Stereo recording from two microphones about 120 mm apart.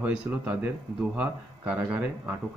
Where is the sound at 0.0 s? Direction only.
10° right (ahead or behind).